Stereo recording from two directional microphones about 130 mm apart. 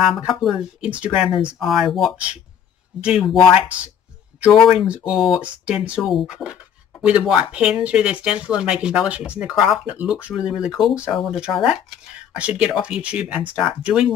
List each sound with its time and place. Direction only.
0.0 s speech: 5° right (ahead or behind)
4.4 s speech: centre (ahead or behind)